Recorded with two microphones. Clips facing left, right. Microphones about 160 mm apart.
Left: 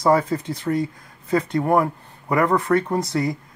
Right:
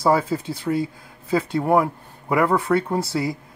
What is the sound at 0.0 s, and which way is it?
Speech, 5° right (ahead or behind).